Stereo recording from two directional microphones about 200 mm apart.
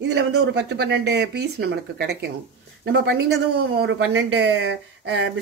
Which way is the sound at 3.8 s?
70° right (ahead or behind).